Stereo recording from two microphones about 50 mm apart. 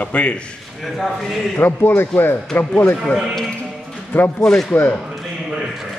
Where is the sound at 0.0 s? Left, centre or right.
Left.